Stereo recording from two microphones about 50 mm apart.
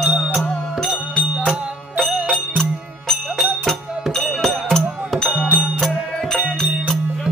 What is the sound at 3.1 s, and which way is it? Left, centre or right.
Music, centre.